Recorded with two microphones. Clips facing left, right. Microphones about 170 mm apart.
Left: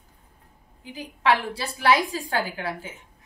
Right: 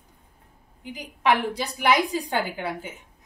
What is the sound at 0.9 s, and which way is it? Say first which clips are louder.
A woman's voice: even; 15° right (ahead or behind).